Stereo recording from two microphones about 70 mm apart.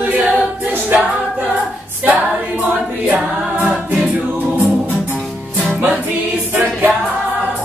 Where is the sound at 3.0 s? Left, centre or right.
Right.